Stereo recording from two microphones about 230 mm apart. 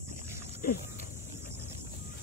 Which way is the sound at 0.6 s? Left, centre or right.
Left.